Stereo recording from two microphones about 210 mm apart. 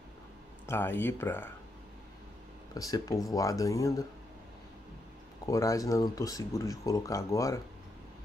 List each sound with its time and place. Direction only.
0.7 s speech: 10° left (ahead or behind)
2.7 s speech: 15° left (ahead or behind)
5.4 s speech: 15° left (ahead or behind)